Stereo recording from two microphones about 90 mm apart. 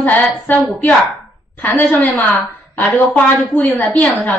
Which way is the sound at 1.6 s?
20° left (ahead or behind).